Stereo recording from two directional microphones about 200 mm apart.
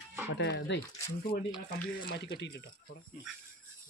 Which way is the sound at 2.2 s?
55° left (ahead or behind).